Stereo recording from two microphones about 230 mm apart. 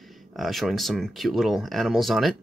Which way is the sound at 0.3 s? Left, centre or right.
Centre.